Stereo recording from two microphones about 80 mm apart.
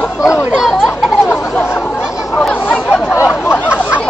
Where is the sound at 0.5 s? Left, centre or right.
Centre.